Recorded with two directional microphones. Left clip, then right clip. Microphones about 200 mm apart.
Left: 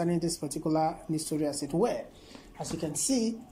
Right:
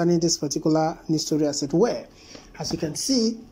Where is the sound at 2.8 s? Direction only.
Centre (ahead or behind).